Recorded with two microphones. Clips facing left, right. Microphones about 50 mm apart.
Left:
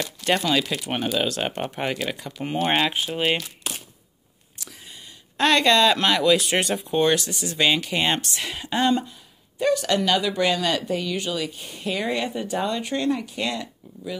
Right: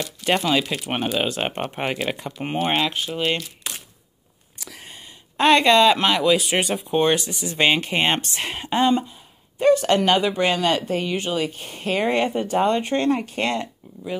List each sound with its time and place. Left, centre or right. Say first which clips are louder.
0.2 s speech: right 2 dB; centre
4.8 s a sound: right 2 dB; right
5.4 s speech: right 3 dB; right
7.0 s speech: right 1 dB; right
8.7 s speech: right 2 dB; right
9.6 s speech: right 5 dB; right